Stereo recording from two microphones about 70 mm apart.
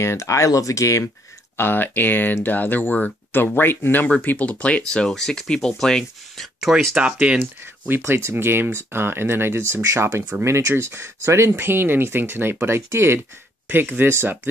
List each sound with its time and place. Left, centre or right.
0.0 s speech: left
1.6 s speech: left; by 7.0 s centre
7.0 s speech: centre
7.9 s speech: right